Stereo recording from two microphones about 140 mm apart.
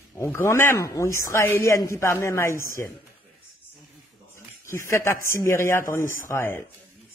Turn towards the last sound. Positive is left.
turn(degrees=15)  # may be behind; listen again after turning